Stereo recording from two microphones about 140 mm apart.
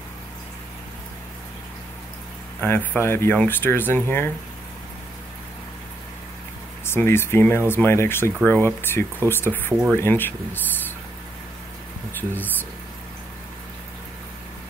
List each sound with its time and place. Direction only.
2.6 s speech: 10° left (ahead or behind)
6.9 s speech: 15° left (ahead or behind)